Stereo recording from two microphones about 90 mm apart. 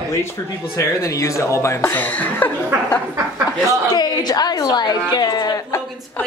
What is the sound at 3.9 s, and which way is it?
A woman's voice, 50° left (ahead or behind).